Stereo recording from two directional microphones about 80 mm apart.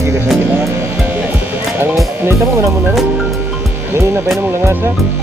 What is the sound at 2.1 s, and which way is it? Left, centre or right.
Music, right.